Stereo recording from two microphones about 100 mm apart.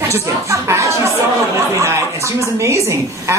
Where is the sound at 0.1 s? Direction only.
30° right (ahead or behind).